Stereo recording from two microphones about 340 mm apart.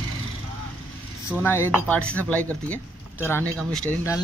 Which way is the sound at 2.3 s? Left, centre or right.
Centre.